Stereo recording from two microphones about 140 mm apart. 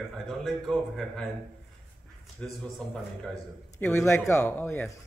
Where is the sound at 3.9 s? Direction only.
20° left (ahead or behind).